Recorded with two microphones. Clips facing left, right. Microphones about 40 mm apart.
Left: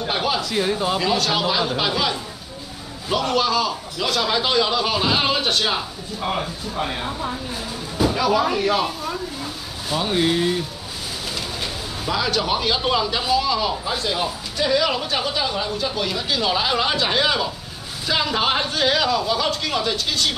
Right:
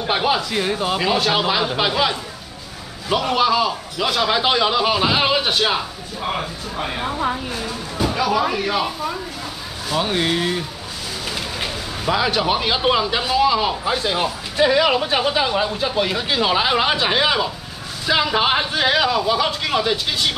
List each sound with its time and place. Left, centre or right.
0.1 s a man's voice: centre
7.0 s speech: right
8.0 s a man's voice: centre